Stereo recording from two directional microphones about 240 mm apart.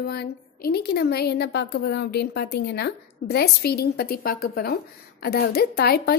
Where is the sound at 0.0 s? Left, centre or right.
Left.